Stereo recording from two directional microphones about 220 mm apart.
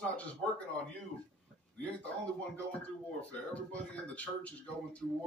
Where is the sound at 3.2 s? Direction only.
5° left (ahead or behind).